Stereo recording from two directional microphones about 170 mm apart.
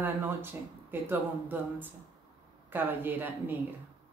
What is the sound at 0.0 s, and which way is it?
Speech, 10° right (ahead or behind).